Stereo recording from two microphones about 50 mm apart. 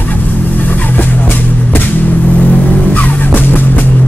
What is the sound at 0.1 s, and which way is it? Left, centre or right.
Vehicle, left.